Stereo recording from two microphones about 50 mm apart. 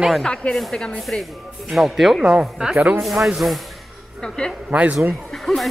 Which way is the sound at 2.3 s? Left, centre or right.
Centre.